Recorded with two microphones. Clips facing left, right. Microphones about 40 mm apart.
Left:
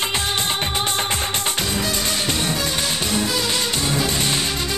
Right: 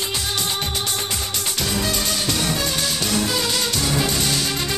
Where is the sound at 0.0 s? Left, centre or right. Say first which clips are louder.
Left 3 dB; left.